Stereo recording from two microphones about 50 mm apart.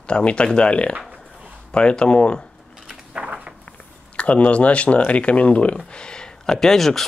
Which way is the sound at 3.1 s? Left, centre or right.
Right.